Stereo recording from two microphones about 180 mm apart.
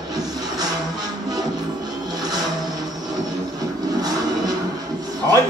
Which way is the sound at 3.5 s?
20° right (ahead or behind).